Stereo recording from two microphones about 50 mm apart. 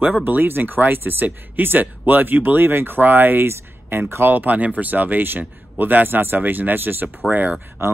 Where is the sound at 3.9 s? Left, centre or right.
Right.